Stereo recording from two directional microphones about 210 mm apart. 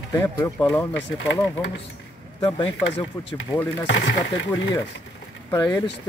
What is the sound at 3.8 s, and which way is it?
Speech, 65° left (ahead or behind).